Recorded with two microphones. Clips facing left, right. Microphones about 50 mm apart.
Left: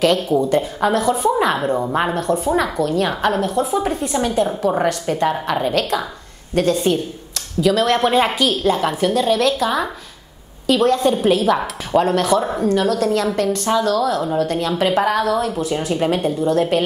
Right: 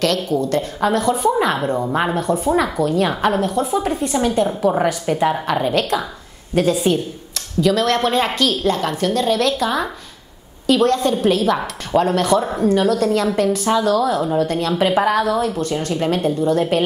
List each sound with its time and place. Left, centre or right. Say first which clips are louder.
0.0 s a woman's voice: left 3 dB; centre